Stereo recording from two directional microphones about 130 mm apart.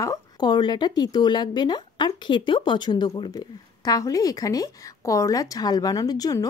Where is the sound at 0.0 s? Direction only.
30° left (ahead or behind).